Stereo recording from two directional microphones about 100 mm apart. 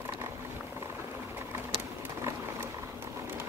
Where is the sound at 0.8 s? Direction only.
20° right (ahead or behind).